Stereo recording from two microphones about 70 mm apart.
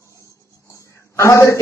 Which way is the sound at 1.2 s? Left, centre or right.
Left.